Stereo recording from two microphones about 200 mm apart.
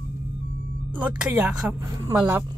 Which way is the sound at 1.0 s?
5° right (ahead or behind).